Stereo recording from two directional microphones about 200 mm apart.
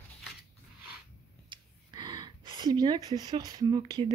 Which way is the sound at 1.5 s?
20° right (ahead or behind).